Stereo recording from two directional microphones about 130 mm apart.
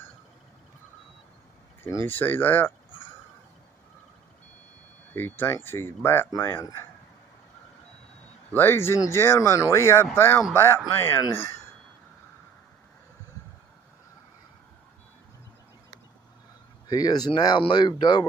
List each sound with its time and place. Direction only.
1.8 s speech: 20° left (ahead or behind)
5.1 s speech: 15° left (ahead or behind)
8.5 s speech: 15° left (ahead or behind)
16.8 s speech: 30° left (ahead or behind)